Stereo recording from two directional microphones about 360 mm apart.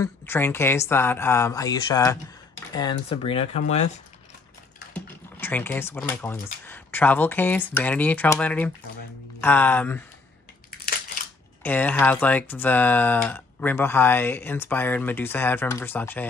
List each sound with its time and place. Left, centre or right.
0.0 s speech: centre
4.9 s speech: centre
11.6 s speech: centre